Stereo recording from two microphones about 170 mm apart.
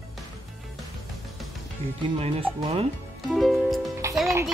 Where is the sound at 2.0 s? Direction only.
35° right (ahead or behind).